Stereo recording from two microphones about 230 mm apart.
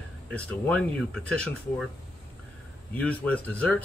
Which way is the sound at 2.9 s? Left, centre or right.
Centre.